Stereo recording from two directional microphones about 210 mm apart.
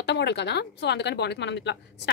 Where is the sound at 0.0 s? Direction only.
55° left (ahead or behind).